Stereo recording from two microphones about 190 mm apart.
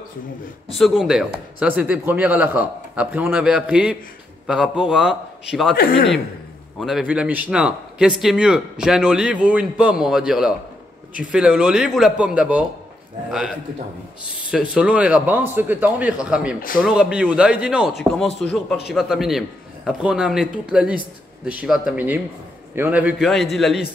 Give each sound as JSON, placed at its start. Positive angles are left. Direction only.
{"t": 0.7, "sound": "a man's voice", "side_deg": 0}
{"t": 6.8, "sound": "a man's voice", "side_deg": 0}
{"t": 14.5, "sound": "a man's voice", "side_deg": -5}